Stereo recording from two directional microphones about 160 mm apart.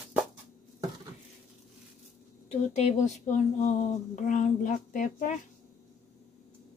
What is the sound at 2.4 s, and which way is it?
Speech, 45° left (ahead or behind).